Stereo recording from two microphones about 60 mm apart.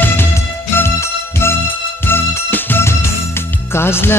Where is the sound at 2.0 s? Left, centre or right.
Left.